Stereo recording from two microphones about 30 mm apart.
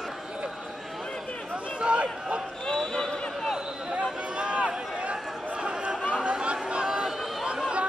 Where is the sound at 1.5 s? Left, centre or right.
Right.